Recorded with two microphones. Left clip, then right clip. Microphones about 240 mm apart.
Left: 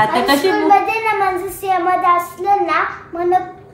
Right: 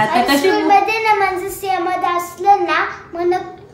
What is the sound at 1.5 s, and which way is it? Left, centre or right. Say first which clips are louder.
Child singing: left 3 dB; centre.